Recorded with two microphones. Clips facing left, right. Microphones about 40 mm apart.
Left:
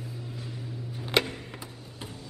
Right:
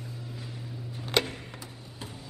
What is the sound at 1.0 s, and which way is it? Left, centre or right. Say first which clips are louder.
Music: left 1 dB; centre.